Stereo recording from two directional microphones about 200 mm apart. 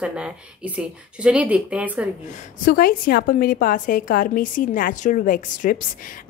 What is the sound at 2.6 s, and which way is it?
A woman's voice, 45° left (ahead or behind).